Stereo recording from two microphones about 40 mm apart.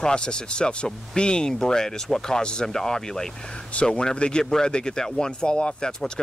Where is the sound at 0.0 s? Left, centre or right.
Left.